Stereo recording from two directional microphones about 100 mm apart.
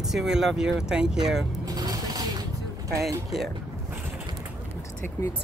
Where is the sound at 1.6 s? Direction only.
40° right (ahead or behind).